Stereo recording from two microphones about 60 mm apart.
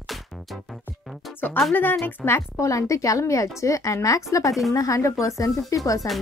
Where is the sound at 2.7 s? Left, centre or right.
Left.